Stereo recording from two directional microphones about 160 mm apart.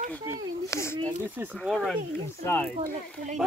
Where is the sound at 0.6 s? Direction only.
15° left (ahead or behind).